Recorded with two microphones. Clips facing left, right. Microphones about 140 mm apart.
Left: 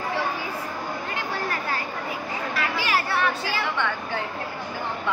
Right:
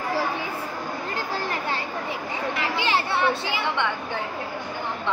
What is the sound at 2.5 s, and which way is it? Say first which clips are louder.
Chatter: right 1 dB; 25° right (ahead or behind).